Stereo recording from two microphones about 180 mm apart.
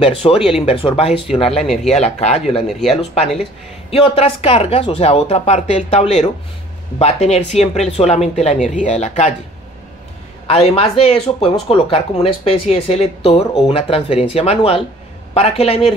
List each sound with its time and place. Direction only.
0.0 s speech: 30° left (ahead or behind)
10.4 s speech: 35° left (ahead or behind)